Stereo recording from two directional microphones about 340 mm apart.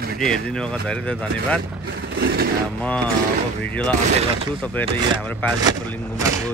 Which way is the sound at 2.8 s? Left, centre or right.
Centre.